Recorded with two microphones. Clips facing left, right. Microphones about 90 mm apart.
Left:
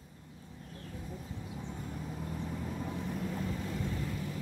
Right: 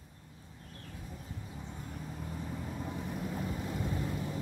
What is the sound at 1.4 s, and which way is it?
Vehicle, centre (ahead or behind).